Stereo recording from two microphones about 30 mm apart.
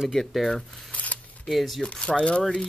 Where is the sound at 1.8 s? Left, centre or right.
Left.